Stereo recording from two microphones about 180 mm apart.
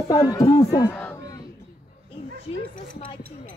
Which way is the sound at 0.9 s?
15° left (ahead or behind).